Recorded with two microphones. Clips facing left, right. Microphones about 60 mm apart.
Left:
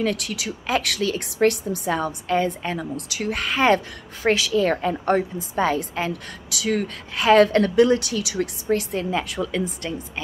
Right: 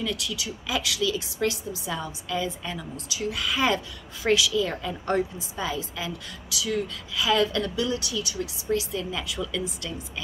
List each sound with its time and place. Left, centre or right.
0.0 s a woman's voice: left
8.4 s a woman's voice: left